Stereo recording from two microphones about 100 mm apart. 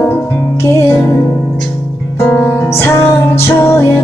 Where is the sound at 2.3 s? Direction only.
20° left (ahead or behind).